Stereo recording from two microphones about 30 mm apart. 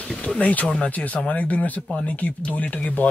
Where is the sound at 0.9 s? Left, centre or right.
Left.